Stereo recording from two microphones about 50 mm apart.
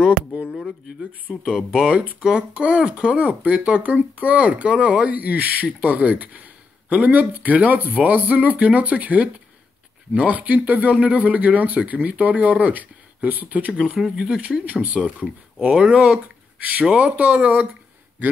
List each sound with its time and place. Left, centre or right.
1.3 s speech: centre
2.0 s speech: right
13.7 s speech: centre
14.6 s speech: right
15.6 s speech: centre
16.5 s speech: right